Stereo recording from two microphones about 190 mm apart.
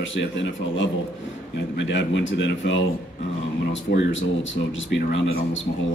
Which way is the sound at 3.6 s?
70° left (ahead or behind).